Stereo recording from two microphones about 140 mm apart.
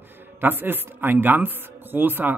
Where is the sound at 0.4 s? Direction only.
15° right (ahead or behind).